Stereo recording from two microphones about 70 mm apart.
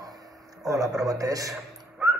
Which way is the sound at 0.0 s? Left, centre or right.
Right.